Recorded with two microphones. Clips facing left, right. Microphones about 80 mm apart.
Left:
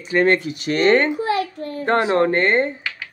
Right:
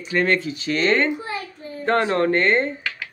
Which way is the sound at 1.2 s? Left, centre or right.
Left.